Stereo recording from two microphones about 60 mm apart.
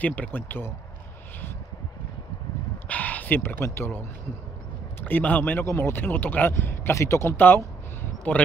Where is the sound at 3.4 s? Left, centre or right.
Left.